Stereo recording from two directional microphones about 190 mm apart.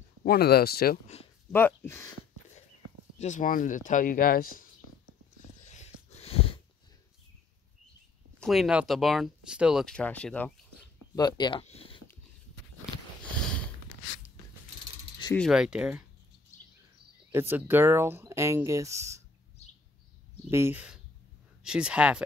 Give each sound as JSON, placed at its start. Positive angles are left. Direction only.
{"t": 0.2, "sound": "speech", "side_deg": 55}
{"t": 1.0, "sound": "speech", "side_deg": 35}
{"t": 1.5, "sound": "speech", "side_deg": 10}
{"t": 3.2, "sound": "speech", "side_deg": 40}
{"t": 5.6, "sound": "a sound", "side_deg": 35}
{"t": 8.4, "sound": "speech", "side_deg": 0}
{"t": 11.1, "sound": "speech", "side_deg": 20}
{"t": 15.3, "sound": "speech", "side_deg": 0}
{"t": 17.3, "sound": "speech", "side_deg": -10}
{"t": 20.4, "sound": "speech", "side_deg": -15}